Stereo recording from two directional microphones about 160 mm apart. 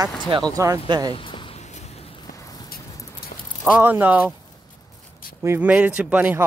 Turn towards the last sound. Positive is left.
turn(degrees=-10)  # may be behind; listen again after turning